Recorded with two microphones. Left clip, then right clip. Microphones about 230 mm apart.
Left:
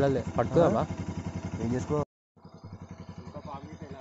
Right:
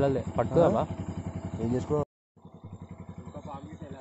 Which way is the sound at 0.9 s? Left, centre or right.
Left.